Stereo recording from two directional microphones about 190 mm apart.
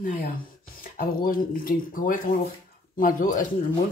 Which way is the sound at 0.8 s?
50° left (ahead or behind).